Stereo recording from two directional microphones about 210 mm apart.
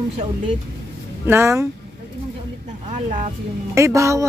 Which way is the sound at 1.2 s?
10° right (ahead or behind).